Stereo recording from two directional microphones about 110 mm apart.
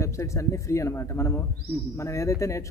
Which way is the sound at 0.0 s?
25° left (ahead or behind).